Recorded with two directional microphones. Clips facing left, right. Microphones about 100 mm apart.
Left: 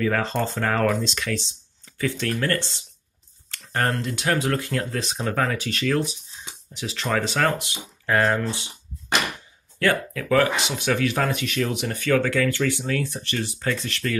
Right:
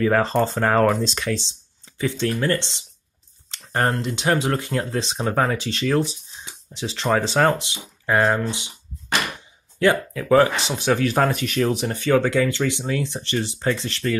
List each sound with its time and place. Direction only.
0.0 s speech: 35° right (ahead or behind)
9.8 s speech: 20° right (ahead or behind)